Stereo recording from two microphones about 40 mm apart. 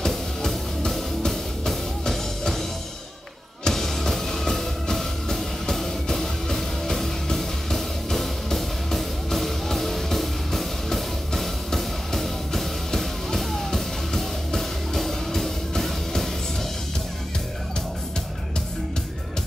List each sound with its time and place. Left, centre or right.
0.0 s music: centre
3.6 s music: centre